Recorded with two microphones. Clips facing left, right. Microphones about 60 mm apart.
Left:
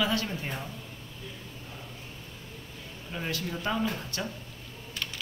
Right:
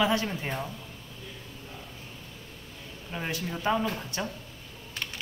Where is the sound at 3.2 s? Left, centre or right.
Right.